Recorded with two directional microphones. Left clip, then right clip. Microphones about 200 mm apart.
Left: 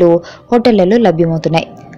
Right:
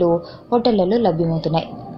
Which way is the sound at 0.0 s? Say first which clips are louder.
Left 8 dB; 30° left (ahead or behind).